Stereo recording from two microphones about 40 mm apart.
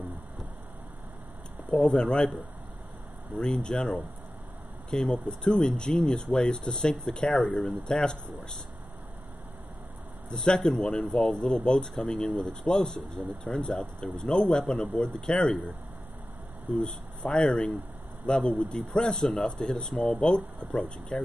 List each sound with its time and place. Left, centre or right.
1.7 s speech: centre
3.3 s speech: left
4.9 s speech: left
10.3 s speech: centre
16.7 s speech: left
19.1 s speech: centre